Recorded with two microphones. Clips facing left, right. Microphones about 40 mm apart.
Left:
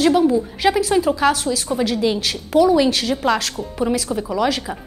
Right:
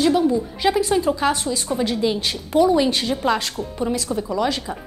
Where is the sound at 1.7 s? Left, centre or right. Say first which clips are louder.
Left 1 dB; centre.